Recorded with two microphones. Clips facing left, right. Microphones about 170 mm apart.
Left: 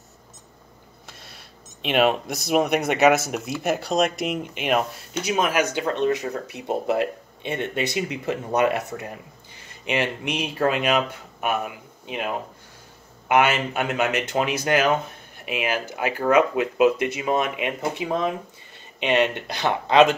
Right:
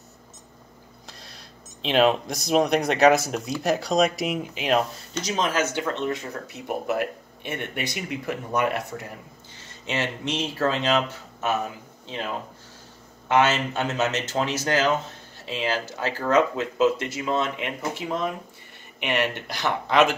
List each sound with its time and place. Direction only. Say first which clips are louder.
1.9 s speech: even; 5° left (ahead or behind)